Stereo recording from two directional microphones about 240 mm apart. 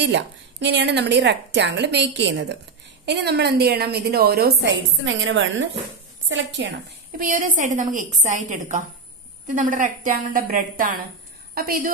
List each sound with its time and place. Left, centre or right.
0.0 s a woman's voice: right
7.2 s a woman's voice: right